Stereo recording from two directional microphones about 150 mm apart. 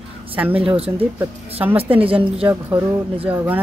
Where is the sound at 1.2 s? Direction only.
15° right (ahead or behind).